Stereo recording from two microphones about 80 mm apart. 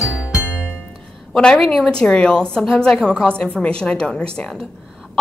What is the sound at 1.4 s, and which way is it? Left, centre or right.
A woman's voice, centre.